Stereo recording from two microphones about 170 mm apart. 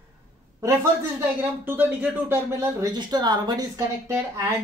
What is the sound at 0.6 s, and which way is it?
Speech, 15° right (ahead or behind).